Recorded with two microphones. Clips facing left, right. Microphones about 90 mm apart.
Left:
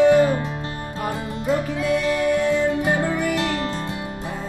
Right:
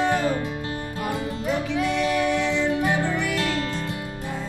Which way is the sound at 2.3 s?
45° left (ahead or behind).